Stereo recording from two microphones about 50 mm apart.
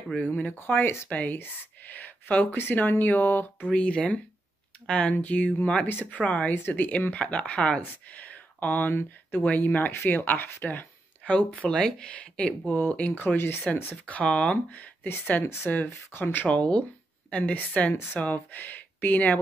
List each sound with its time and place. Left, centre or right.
0.1 s speech: left
3.7 s speech: left
5.9 s speech: left
6.1 s speech: left
11.2 s speech: left
13.1 s speech: left
13.7 s speech: left
15.4 s speech: left
16.4 s speech: left